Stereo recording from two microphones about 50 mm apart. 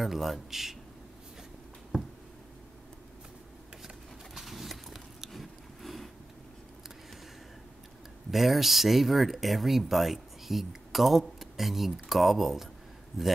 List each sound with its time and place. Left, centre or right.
0.0 s speech: centre
3.8 s a sound: centre
8.3 s speech: centre